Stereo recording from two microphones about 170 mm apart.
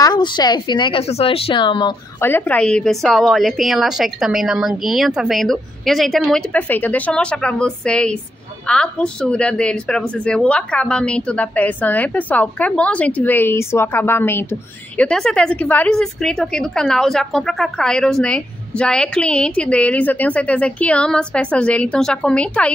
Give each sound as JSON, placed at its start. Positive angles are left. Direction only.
{"t": 0.0, "sound": "a woman's voice", "side_deg": 25}
{"t": 2.1, "sound": "a woman's voice", "side_deg": 15}